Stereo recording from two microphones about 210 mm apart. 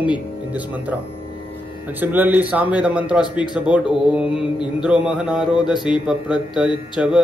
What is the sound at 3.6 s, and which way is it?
Mantra, 5° right (ahead or behind).